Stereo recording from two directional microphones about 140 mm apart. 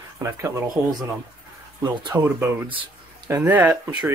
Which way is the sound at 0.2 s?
20° right (ahead or behind).